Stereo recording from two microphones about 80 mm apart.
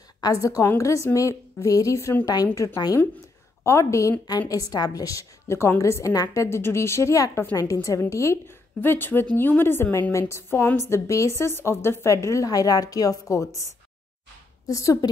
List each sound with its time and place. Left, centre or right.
0.2 s a woman's voice: left
4.3 s a woman's voice: left
12.4 s a woman's voice: left
14.7 s a woman's voice: left